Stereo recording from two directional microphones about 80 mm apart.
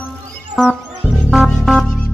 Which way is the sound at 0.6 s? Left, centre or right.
Centre.